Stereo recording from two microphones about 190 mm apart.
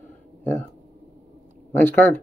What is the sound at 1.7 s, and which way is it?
Speech, 10° left (ahead or behind).